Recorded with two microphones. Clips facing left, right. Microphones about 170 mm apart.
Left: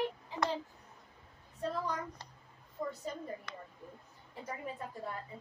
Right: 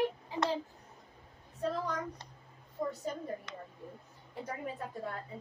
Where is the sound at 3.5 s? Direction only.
25° right (ahead or behind).